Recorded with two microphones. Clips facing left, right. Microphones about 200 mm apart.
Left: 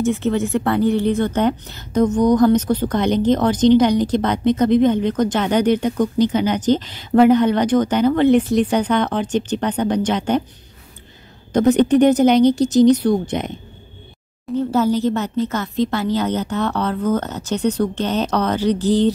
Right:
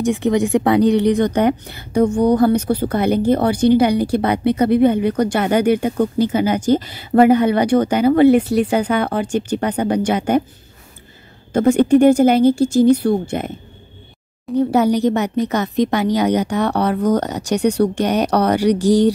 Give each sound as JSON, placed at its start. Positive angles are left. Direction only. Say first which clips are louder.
{"t": 0.0, "sound": "speech", "louder": "right 2 dB", "side_deg": -15}
{"t": 11.5, "sound": "speech", "louder": "right 1 dB", "side_deg": -10}
{"t": 14.5, "sound": "speech", "louder": "right 4 dB", "side_deg": 0}
{"t": 15.0, "sound": "speech", "louder": "right 2 dB", "side_deg": -15}